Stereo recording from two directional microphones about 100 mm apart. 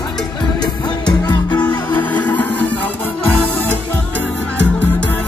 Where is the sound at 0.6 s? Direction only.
40° left (ahead or behind).